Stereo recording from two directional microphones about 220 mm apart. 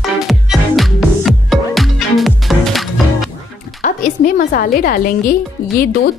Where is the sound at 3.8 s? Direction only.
35° left (ahead or behind).